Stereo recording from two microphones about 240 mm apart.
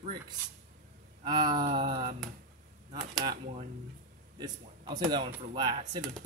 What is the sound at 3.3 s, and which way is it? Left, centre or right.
Speech, right.